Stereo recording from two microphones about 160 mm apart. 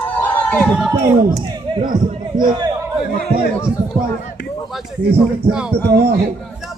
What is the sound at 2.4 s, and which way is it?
Speech, 25° right (ahead or behind).